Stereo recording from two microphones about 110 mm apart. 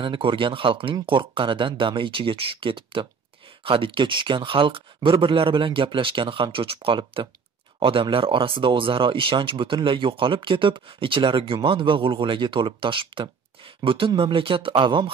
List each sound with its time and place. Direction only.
0.0 s speech: 50° right (ahead or behind)